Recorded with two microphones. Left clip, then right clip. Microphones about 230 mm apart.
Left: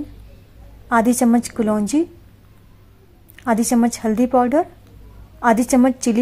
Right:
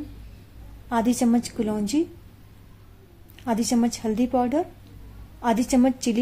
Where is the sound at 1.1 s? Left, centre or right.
Centre.